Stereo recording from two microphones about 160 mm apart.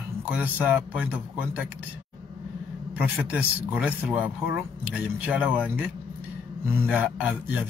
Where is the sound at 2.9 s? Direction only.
10° right (ahead or behind).